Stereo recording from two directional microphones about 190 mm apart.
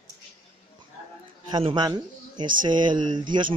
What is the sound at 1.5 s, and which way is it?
Speech, 25° right (ahead or behind).